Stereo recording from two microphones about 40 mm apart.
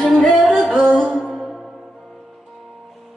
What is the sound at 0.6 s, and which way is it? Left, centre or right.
Music, centre.